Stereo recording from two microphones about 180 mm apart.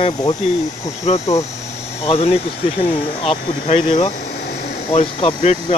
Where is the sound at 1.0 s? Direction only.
35° left (ahead or behind).